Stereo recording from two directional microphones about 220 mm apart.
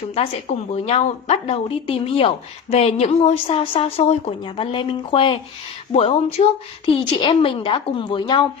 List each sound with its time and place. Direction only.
0.1 s a woman's voice: 25° left (ahead or behind)